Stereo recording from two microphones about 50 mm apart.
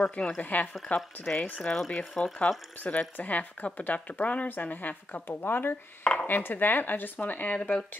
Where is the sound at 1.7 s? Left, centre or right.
Centre.